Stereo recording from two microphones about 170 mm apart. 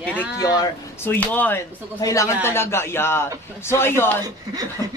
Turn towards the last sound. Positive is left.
turn(degrees=-20)  # may be behind; listen again after turning